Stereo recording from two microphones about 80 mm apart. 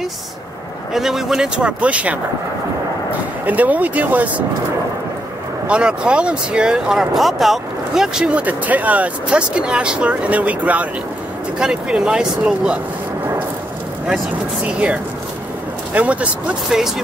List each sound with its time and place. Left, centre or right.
0.9 s speech: centre
5.7 s speech: centre
14.7 s speech: centre